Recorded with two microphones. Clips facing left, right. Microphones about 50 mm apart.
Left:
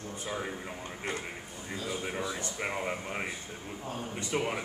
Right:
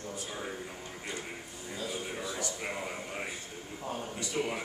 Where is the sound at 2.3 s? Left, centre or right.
Left.